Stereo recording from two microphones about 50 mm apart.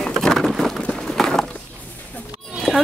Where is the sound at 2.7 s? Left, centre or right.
Centre.